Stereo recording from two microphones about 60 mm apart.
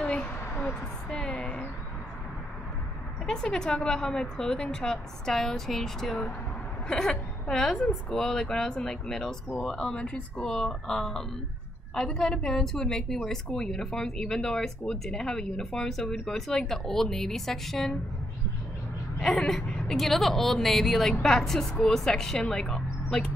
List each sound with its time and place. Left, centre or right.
0.0 s a sound: centre
3.3 s a woman's voice: centre
19.2 s speech: centre